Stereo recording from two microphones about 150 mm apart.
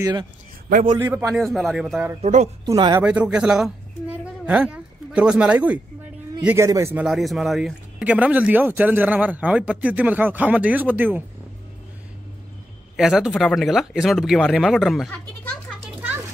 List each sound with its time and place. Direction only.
0.0 s speech: 30° right (ahead or behind)
0.9 s speech: 15° right (ahead or behind)
1.3 s speech: centre (ahead or behind)
2.2 s speech: 50° right (ahead or behind)
2.6 s speech: 25° right (ahead or behind)
3.0 s a woman's voice: 10° right (ahead or behind)
6.5 s speech: 20° right (ahead or behind)
7.1 s speech: centre (ahead or behind)
12.9 s speech: 5° right (ahead or behind)